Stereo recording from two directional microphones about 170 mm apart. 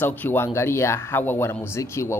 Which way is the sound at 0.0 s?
10° left (ahead or behind).